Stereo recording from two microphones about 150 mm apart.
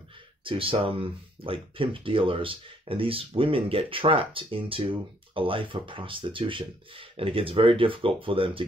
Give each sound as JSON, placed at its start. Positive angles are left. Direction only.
{"t": 0.4, "sound": "speech", "side_deg": -35}